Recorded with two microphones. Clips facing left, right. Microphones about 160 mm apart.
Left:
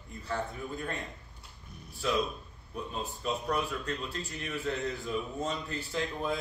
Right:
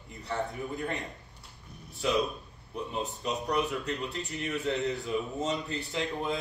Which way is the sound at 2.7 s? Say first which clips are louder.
Right 3 dB; 20° right (ahead or behind).